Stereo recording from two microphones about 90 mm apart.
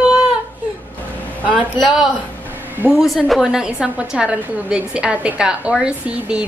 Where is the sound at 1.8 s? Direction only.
5° right (ahead or behind).